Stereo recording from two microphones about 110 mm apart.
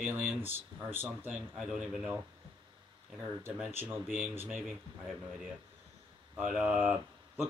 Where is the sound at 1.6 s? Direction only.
5° right (ahead or behind).